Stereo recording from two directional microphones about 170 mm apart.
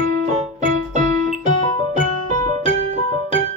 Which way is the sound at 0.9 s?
45° right (ahead or behind).